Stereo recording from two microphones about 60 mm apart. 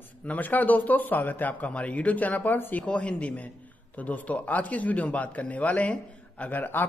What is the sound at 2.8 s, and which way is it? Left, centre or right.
A man's voice, centre.